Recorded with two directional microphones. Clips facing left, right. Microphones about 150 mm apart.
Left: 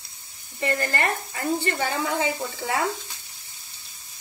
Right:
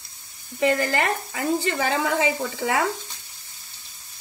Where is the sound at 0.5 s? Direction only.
90° right.